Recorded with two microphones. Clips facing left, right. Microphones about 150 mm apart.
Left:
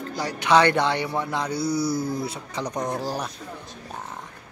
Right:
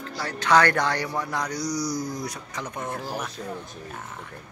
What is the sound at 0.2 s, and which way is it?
Speech, 15° left (ahead or behind).